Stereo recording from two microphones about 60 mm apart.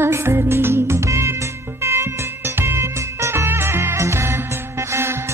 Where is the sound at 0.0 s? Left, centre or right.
Right.